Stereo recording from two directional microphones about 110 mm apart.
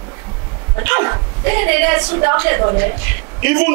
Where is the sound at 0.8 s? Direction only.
20° right (ahead or behind).